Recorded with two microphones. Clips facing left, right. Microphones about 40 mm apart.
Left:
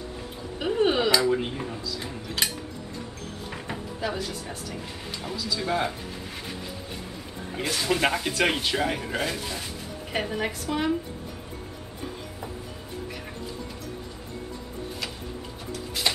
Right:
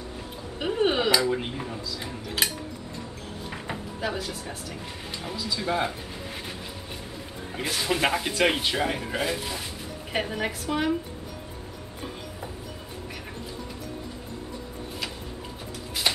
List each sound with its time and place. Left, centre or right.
0.6 s speech: centre
3.6 s music: centre
5.2 s speech: centre
5.6 s speech: centre
7.5 s speech: centre